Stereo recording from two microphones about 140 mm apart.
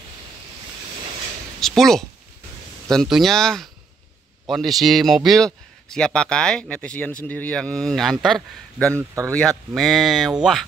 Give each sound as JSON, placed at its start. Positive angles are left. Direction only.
{"t": 1.6, "sound": "speech", "side_deg": 5}
{"t": 8.9, "sound": "speech", "side_deg": -20}
{"t": 9.3, "sound": "speech", "side_deg": 10}